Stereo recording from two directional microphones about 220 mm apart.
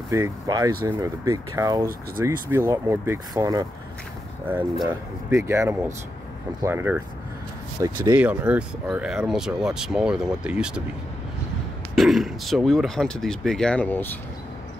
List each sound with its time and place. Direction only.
0.1 s speech: 15° right (ahead or behind)
11.9 s speech: centre (ahead or behind)